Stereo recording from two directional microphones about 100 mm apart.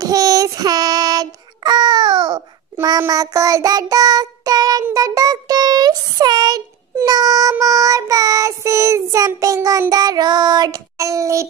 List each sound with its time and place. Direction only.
0.0 s child singing: 35° right (ahead or behind)
3.1 s child singing: 35° right (ahead or behind)